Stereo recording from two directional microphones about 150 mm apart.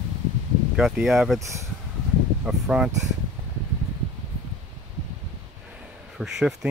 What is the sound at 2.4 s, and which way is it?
Speech, 5° right (ahead or behind).